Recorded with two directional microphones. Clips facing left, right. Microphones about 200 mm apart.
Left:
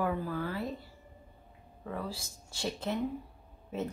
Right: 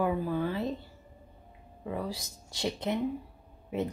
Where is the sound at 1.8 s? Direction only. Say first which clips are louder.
Right 3 dB; 15° right (ahead or behind).